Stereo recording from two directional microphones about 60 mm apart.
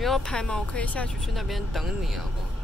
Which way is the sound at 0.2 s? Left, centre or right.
Centre.